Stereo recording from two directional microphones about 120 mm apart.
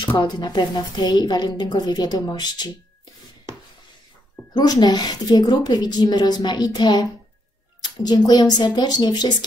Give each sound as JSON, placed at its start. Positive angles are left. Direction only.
{"t": 0.0, "sound": "a woman's voice", "side_deg": 40}
{"t": 4.6, "sound": "a woman's voice", "side_deg": 35}